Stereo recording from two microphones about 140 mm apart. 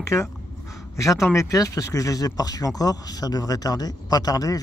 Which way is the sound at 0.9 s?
20° left (ahead or behind).